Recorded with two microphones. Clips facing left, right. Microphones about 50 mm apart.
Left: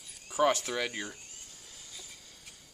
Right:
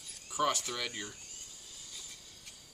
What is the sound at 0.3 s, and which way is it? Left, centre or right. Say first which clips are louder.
Speech: left 5 dB; left.